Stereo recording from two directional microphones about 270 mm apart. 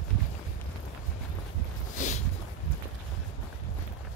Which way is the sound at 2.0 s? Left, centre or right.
Left.